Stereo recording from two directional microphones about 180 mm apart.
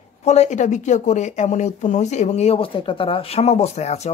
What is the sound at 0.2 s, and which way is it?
Speech, 40° left (ahead or behind).